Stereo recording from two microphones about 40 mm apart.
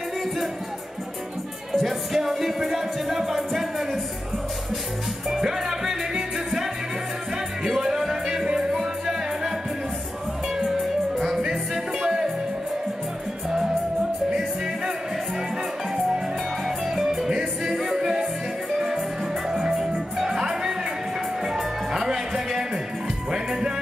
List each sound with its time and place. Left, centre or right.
1.7 s music: centre
5.3 s music: centre
10.6 s music: centre
16.6 s music: centre